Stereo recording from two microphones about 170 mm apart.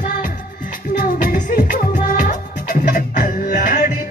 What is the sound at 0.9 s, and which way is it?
Music, 60° left (ahead or behind).